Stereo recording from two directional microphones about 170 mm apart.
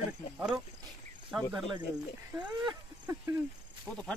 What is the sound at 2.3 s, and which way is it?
Speech, 5° right (ahead or behind).